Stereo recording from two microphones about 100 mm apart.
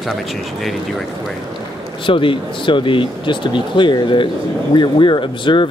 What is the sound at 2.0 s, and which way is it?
Speech, 60° left (ahead or behind).